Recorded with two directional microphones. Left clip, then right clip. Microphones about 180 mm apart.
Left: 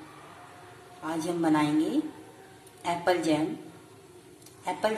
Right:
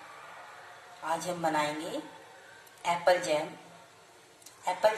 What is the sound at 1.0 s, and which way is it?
Speech, centre (ahead or behind).